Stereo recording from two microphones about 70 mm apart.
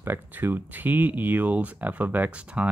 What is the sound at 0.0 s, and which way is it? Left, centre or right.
Speech, right.